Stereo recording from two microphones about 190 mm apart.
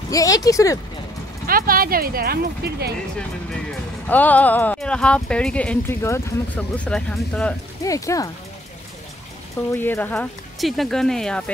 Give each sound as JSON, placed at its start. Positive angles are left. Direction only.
{"t": 0.1, "sound": "speech", "side_deg": 20}
{"t": 1.5, "sound": "speech", "side_deg": -50}
{"t": 4.1, "sound": "speech", "side_deg": 10}
{"t": 7.8, "sound": "speech", "side_deg": 15}
{"t": 9.7, "sound": "speech", "side_deg": 10}